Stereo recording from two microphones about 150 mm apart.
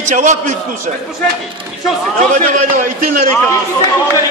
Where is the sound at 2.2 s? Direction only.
60° right (ahead or behind).